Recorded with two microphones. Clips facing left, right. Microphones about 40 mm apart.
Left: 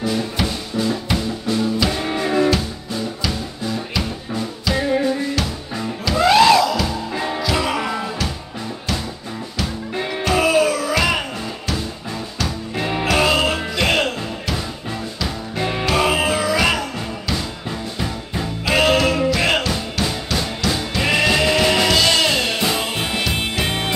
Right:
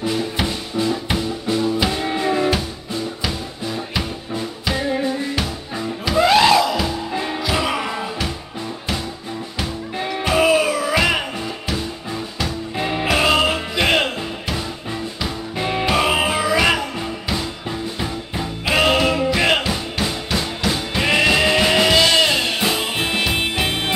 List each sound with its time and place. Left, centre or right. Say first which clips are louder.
0.0 s music: even; centre
1.9 s music: right 1 dB; centre
6.0 s music: left 1 dB; centre
6.6 s music: left 1 dB; centre
7.2 s music: left 3 dB; centre
7.5 s music: right 1 dB; centre
10.3 s music: even; centre